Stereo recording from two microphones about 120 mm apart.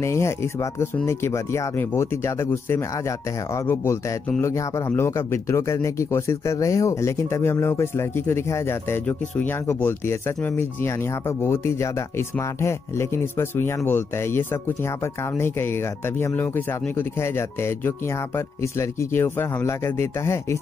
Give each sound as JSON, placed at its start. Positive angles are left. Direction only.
{"t": 0.0, "sound": "speech", "side_deg": 25}